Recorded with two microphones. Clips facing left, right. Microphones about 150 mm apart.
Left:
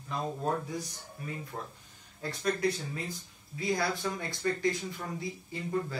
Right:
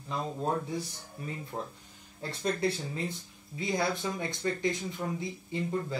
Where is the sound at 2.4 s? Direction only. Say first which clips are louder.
Even; 25° right (ahead or behind).